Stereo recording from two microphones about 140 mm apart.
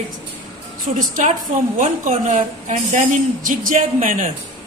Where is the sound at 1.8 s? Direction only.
65° right (ahead or behind).